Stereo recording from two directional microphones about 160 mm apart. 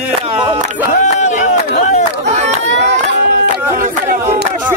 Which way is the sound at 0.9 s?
50° left (ahead or behind).